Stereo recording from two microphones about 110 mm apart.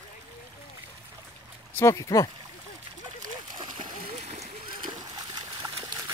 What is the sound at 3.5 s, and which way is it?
Splash, 45° right (ahead or behind).